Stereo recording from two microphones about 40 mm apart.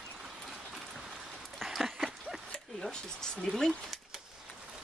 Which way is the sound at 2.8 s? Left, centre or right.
Centre.